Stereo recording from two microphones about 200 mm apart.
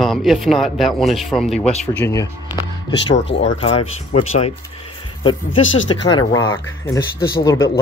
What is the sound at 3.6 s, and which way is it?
Speech, 30° left (ahead or behind).